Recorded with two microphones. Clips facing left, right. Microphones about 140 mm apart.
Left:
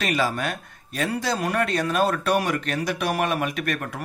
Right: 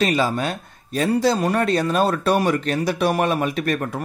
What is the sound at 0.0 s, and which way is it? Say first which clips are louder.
Speech: right 4 dB; 25° right (ahead or behind).